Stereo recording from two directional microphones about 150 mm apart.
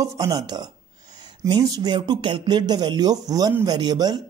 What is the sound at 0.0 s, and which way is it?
A man's voice, 25° right (ahead or behind).